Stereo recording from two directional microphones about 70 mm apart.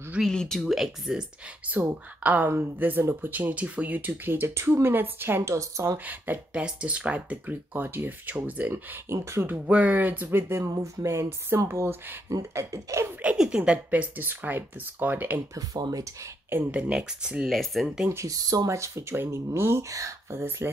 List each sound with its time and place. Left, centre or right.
0.3 s speech: centre
1.6 s speech: right
5.4 s speech: right
6.0 s speech: right
9.1 s speech: right
9.5 s speech: right
10.6 s speech: right
13.2 s speech: centre
16.7 s speech: centre
17.5 s speech: centre
18.1 s speech: right
18.7 s speech: right